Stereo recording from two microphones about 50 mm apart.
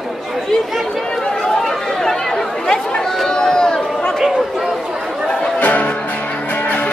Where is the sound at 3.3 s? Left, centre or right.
Centre.